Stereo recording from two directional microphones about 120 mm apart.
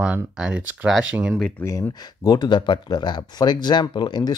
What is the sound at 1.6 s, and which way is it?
Speech, 25° left (ahead or behind).